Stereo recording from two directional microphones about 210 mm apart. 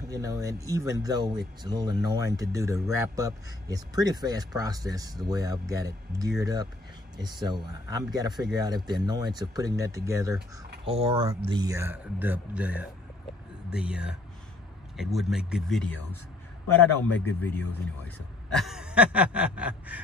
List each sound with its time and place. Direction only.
0.1 s speech: 15° right (ahead or behind)
10.9 s speech: 25° right (ahead or behind); by 15.9 s centre (ahead or behind)
17.2 s speech: 10° left (ahead or behind); by 20.0 s 5° right (ahead or behind)